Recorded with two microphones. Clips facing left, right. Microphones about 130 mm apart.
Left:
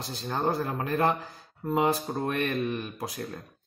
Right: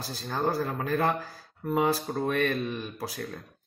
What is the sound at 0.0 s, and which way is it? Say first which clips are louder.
Speech: even; 20° left (ahead or behind).